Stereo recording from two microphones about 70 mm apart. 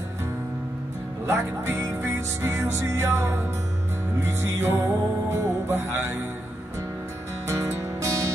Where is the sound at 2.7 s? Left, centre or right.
Right.